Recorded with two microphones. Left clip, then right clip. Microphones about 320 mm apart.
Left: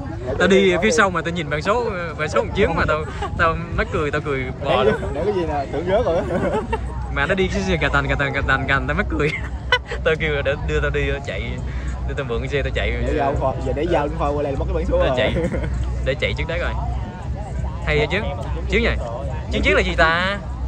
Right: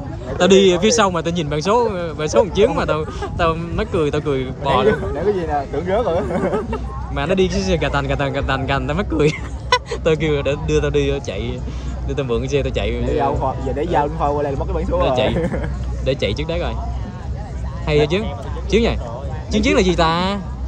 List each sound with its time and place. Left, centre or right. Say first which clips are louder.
0.4 s a man's voice: right 3 dB; centre
5.2 s speech: right 2 dB; right
7.2 s a man's voice: right 2 dB; centre
13.2 s speech: even; right
16.1 s a man's voice: right 2 dB; centre
17.8 s a man's voice: right 3 dB; centre